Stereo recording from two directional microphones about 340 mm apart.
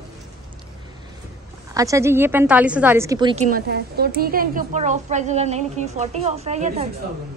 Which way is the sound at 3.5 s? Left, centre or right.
Right.